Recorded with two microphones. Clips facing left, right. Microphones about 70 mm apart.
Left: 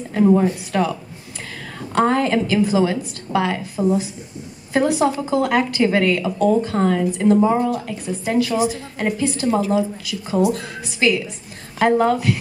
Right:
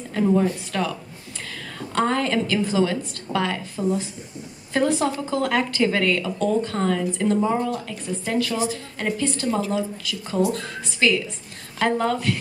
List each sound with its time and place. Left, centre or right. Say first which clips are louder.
0.1 s a woman's voice: left 5 dB; centre